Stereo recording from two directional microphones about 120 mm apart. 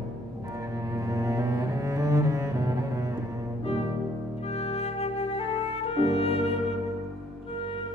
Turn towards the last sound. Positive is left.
turn(degrees=55)  # may be behind; listen again after turning